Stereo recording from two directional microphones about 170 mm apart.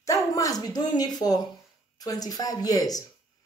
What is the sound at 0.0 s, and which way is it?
A woman's voice, 20° left (ahead or behind).